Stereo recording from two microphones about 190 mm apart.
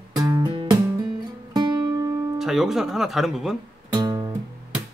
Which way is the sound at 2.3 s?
Centre (ahead or behind).